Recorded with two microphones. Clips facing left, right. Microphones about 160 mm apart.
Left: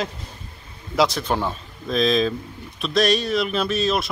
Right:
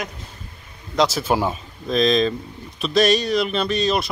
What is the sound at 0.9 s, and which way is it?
Speech, 5° right (ahead or behind).